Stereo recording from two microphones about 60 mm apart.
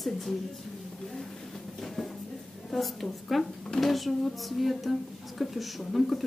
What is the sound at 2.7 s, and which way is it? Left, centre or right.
Speech, centre.